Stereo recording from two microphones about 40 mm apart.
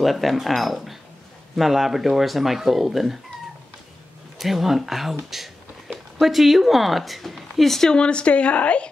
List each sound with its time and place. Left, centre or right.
0.0 s speech: centre
4.4 s speech: centre
7.9 s a woman's voice: left